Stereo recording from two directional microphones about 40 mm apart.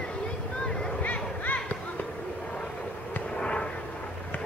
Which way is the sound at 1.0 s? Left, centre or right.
Left.